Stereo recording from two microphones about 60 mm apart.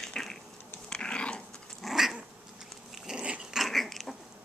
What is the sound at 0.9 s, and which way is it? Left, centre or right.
Dog, centre.